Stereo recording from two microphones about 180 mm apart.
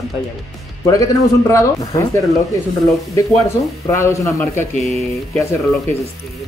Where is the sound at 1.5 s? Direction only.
20° left (ahead or behind).